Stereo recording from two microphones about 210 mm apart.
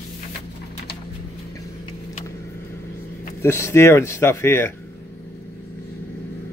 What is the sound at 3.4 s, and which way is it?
Speech, 10° left (ahead or behind).